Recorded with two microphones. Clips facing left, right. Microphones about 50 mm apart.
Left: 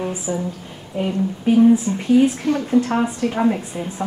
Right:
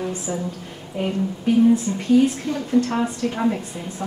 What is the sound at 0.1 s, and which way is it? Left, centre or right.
A woman's voice, centre.